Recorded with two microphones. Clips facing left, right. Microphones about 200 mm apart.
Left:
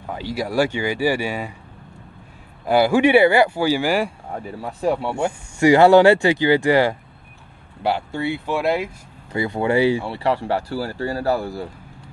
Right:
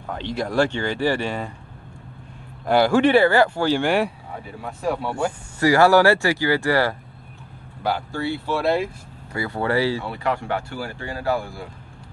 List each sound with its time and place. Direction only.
0.1 s speech: 10° left (ahead or behind)
2.6 s speech: 10° left (ahead or behind)
4.6 s speech: 30° left (ahead or behind)
10.0 s speech: 30° left (ahead or behind)